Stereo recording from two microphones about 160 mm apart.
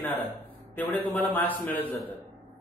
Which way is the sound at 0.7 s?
10° left (ahead or behind).